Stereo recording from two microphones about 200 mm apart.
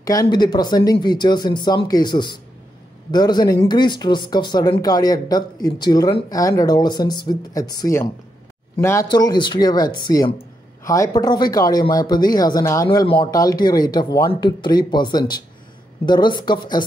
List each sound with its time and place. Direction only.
0.0 s speech: 20° left (ahead or behind)